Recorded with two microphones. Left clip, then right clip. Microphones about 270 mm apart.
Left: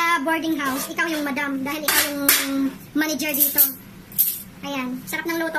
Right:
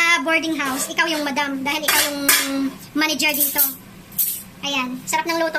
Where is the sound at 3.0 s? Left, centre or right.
Centre.